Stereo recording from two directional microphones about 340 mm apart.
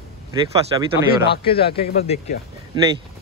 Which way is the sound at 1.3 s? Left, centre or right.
Centre.